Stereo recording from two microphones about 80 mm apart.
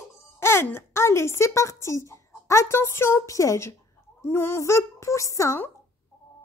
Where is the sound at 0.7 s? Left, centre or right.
Left.